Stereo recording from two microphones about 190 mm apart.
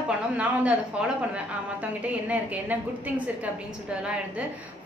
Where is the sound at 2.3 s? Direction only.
10° right (ahead or behind).